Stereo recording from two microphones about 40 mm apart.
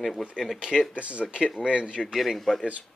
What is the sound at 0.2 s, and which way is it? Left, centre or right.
Speech, centre.